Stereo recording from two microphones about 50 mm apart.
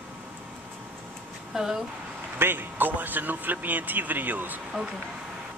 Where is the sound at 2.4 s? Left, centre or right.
Right.